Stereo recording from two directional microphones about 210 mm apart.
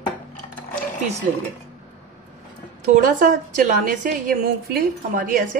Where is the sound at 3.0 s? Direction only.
40° right (ahead or behind).